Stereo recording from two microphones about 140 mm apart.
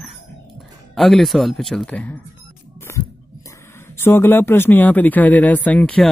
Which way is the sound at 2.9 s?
20° left (ahead or behind).